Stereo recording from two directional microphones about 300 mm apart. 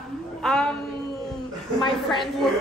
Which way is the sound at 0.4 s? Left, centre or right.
Centre.